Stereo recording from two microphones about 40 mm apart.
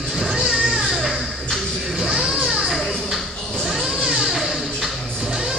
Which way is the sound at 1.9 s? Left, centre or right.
Centre.